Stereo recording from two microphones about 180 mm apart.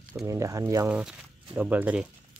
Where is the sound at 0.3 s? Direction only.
20° right (ahead or behind).